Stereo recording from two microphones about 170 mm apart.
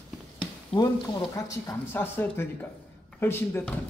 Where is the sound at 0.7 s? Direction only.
30° left (ahead or behind).